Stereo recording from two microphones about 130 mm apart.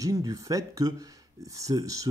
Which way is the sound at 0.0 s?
25° right (ahead or behind).